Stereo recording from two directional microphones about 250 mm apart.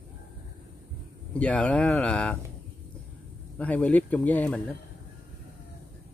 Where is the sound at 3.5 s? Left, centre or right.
Centre.